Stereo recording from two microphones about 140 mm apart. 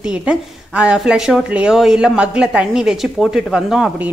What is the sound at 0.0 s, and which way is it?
A woman's voice, 5° right (ahead or behind).